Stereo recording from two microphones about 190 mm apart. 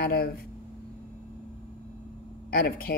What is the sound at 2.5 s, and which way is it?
Speech, 55° left (ahead or behind).